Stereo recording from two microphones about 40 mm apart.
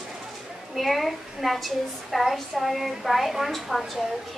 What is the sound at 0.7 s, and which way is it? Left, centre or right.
A woman's voice, centre.